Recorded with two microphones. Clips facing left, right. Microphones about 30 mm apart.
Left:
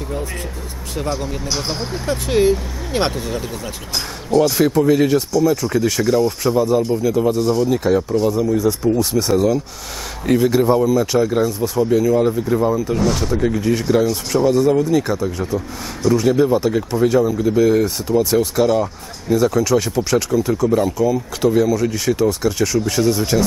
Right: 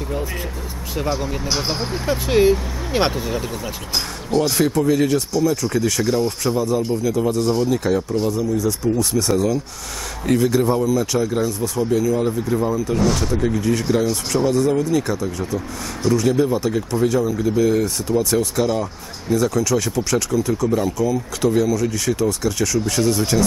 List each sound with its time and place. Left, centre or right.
0.9 s speech: centre
7.0 s speech: centre
7.4 s speech: centre
7.7 s speech: centre
10.2 s speech: centre
12.9 s speech: centre
18.7 s speech: centre
19.3 s speech: centre